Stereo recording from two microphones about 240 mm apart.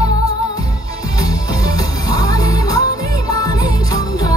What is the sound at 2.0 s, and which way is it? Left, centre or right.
Music, centre.